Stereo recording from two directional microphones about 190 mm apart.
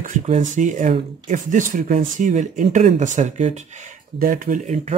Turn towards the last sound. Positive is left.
turn(degrees=-35)  # may be behind; listen again after turning